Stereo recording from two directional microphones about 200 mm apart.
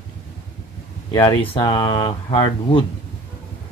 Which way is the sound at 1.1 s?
25° left (ahead or behind).